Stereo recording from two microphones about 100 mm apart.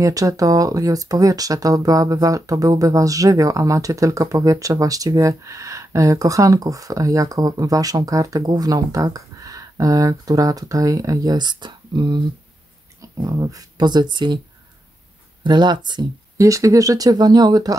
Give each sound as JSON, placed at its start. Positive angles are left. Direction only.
{"t": 0.0, "sound": "speech", "side_deg": -35}
{"t": 13.2, "sound": "speech", "side_deg": -35}
{"t": 15.4, "sound": "speech", "side_deg": -50}
{"t": 16.3, "sound": "speech", "side_deg": -30}